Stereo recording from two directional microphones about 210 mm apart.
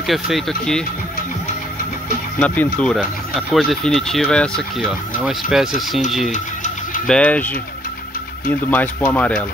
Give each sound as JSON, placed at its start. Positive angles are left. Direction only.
{"t": 0.0, "sound": "speech", "side_deg": 0}
{"t": 2.4, "sound": "speech", "side_deg": 5}
{"t": 6.3, "sound": "music", "side_deg": 35}
{"t": 7.1, "sound": "speech", "side_deg": 5}